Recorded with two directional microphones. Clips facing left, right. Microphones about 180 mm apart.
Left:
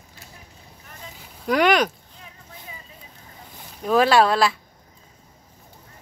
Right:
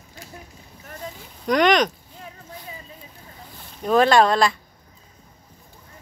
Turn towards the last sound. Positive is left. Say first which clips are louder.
# right 1 dB
turn(degrees=5)  # may be behind; listen again after turning